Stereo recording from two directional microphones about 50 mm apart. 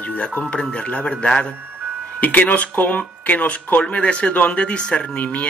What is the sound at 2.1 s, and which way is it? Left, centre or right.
Speech, left.